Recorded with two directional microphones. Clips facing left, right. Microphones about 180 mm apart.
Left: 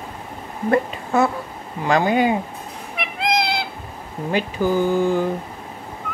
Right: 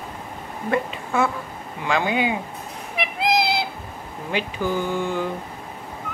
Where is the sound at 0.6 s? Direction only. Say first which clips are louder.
Left 5 dB; 40° left (ahead or behind).